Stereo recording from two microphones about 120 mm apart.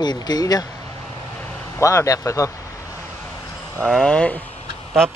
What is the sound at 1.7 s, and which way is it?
Speech, 25° left (ahead or behind).